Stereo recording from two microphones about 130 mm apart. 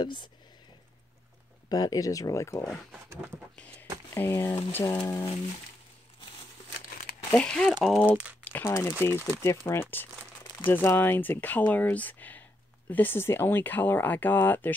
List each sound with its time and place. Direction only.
0.0 s speech: 35° left (ahead or behind)
1.7 s speech: 30° left (ahead or behind)
4.1 s speech: 20° left (ahead or behind)
7.3 s speech: 5° left (ahead or behind)
8.6 s speech: 25° left (ahead or behind)